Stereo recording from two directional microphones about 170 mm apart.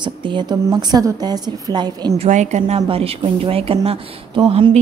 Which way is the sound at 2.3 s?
45° right (ahead or behind).